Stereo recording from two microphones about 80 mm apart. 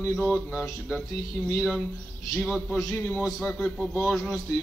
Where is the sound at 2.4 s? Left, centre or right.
Centre.